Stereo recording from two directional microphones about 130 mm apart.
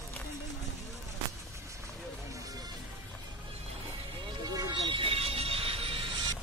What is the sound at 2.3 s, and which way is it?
Music, 25° right (ahead or behind).